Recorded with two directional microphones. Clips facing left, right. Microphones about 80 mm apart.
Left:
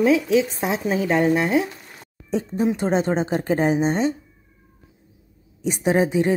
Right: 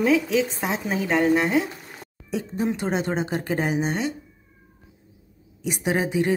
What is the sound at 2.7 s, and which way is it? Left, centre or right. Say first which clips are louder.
Speech: left 4 dB; left.